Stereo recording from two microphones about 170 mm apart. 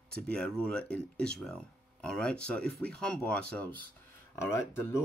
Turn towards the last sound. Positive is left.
turn(degrees=15)  # may be behind; listen again after turning